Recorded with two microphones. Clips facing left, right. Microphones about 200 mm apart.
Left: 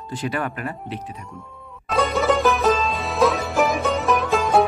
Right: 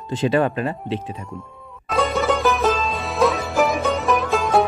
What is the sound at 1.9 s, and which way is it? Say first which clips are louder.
Music: even; centre (ahead or behind).